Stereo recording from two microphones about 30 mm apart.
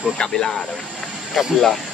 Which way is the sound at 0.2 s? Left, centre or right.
Left.